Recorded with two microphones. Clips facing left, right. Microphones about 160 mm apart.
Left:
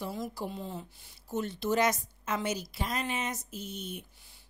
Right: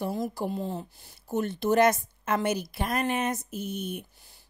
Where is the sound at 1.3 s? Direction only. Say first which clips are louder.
Right 5 dB; 55° right (ahead or behind).